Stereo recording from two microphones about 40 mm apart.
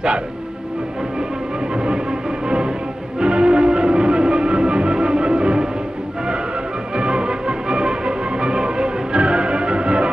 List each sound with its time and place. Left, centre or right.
1.7 s music: right
7.0 s music: right